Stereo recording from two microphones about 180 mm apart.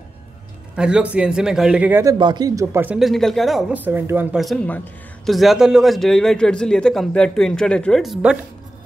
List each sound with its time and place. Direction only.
0.7 s speech: 5° right (ahead or behind)
2.1 s speech: 25° right (ahead or behind)
3.0 s speech: centre (ahead or behind)